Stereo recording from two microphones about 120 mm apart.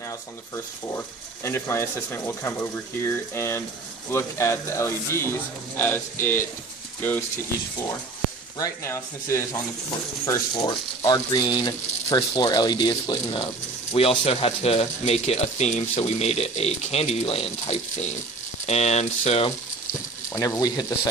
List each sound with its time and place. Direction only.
0.9 s speech: 20° left (ahead or behind)
8.5 s speech: 20° left (ahead or behind)
10.6 s speech: 35° left (ahead or behind)
13.9 s speech: 55° left (ahead or behind)
20.3 s speech: 30° left (ahead or behind)